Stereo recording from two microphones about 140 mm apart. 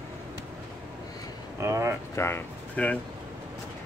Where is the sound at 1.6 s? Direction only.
20° right (ahead or behind).